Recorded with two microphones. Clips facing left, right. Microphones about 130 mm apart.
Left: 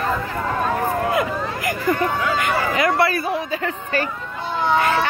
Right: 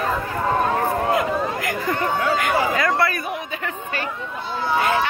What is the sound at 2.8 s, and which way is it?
A woman's voice, 30° left (ahead or behind).